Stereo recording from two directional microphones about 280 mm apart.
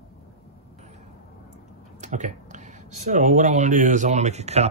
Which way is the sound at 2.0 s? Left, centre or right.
Right.